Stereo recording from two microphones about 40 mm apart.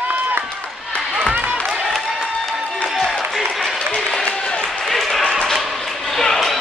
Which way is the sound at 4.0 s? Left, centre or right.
Centre.